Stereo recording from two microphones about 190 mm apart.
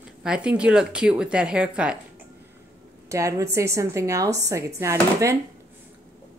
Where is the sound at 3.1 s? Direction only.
15° right (ahead or behind).